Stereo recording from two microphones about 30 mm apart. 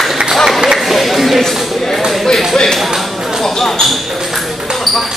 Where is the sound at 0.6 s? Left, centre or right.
Centre.